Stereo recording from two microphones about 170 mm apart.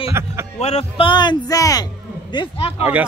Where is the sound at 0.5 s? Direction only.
40° left (ahead or behind).